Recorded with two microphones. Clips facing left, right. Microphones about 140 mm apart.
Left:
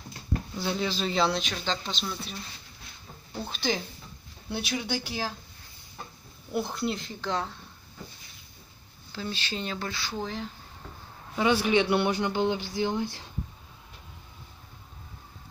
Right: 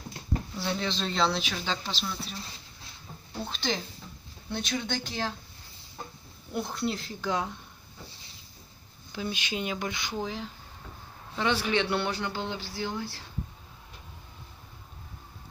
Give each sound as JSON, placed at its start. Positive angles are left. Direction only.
{"t": 0.6, "sound": "speech", "side_deg": 5}
{"t": 3.4, "sound": "speech", "side_deg": 5}
{"t": 6.5, "sound": "speech", "side_deg": 0}
{"t": 9.1, "sound": "speech", "side_deg": -15}
{"t": 10.1, "sound": "speech", "side_deg": -5}
{"t": 11.3, "sound": "speech", "side_deg": 10}